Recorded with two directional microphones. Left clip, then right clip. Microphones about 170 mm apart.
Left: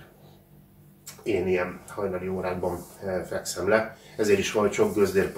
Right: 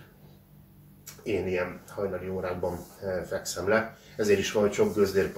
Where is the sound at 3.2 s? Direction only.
5° left (ahead or behind).